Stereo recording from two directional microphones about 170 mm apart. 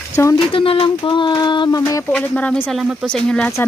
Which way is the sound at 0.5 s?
30° left (ahead or behind).